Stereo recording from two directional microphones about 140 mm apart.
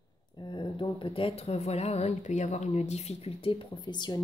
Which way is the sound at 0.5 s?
35° left (ahead or behind).